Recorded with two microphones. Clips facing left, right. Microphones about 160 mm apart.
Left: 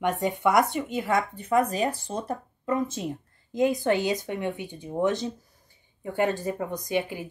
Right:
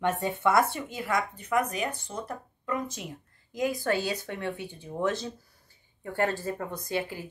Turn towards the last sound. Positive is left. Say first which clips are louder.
# left 4 dB
turn(degrees=15)  # may be behind; listen again after turning